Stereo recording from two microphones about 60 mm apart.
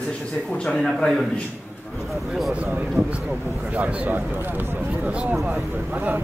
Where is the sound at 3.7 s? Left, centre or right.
Right.